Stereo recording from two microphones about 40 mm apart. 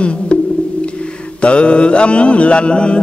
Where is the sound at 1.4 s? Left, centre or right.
Left.